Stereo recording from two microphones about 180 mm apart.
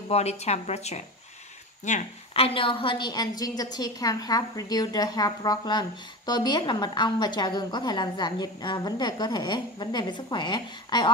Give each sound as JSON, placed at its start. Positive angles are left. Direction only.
{"t": 0.1, "sound": "a woman's voice", "side_deg": 35}